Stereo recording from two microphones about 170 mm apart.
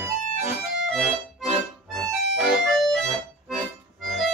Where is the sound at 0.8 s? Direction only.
Centre (ahead or behind).